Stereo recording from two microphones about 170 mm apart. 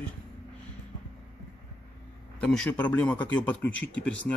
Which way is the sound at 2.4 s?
5° left (ahead or behind).